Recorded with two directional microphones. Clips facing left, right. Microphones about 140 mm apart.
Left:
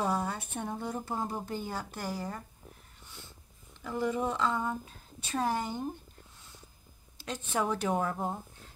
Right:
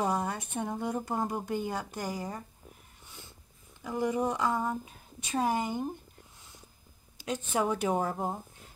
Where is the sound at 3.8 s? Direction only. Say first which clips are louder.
Right 2 dB; 15° right (ahead or behind).